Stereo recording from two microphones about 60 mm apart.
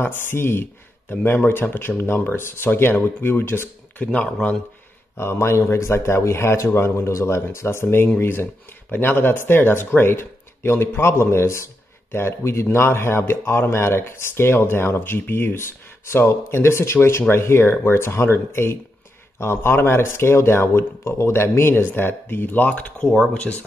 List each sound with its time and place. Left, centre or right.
0.0 s a man's voice: left
4.0 s a man's voice: left
5.1 s speech: left
23.3 s a man's voice: centre